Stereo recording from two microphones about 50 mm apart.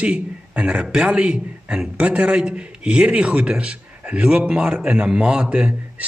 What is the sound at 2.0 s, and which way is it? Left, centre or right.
Speech, right.